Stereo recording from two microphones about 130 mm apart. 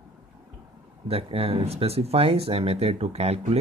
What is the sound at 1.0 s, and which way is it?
Speech, 50° right (ahead or behind).